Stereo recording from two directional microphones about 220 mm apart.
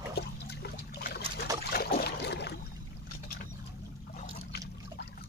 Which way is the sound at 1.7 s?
45° left (ahead or behind).